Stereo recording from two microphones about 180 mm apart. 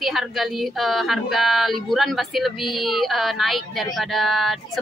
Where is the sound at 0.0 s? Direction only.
Centre (ahead or behind).